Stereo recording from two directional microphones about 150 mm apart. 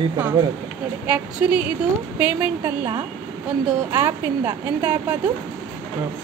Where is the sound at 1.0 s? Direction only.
10° right (ahead or behind).